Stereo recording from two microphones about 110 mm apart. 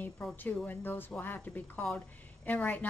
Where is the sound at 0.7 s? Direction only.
20° left (ahead or behind).